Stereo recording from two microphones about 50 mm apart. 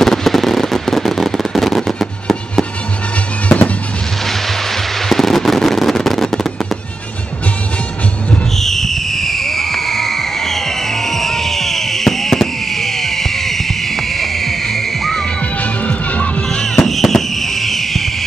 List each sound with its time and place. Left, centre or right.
0.0 s fireworks: centre
3.4 s fireworks: left
5.1 s fireworks: centre
8.5 s fireworks: centre
15.6 s music: left
16.4 s fireworks: centre